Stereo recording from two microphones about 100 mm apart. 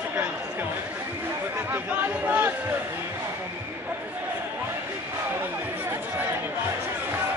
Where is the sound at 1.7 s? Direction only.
15° right (ahead or behind).